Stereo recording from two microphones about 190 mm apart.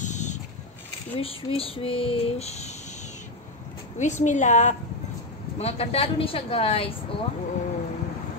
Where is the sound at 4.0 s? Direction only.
40° left (ahead or behind).